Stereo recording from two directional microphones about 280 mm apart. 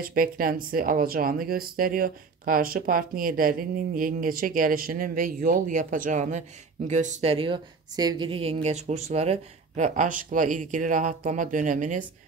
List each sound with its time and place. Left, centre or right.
0.0 s speech: right